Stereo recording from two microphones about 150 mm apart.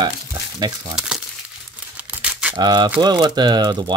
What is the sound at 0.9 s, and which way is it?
Speech, centre (ahead or behind).